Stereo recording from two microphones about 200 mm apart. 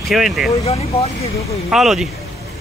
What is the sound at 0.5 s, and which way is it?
Speech, 30° left (ahead or behind).